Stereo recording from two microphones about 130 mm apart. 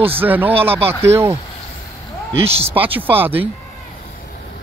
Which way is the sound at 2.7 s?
15° right (ahead or behind).